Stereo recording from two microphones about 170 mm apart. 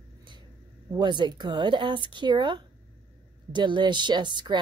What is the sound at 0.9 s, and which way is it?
Speech, 25° right (ahead or behind).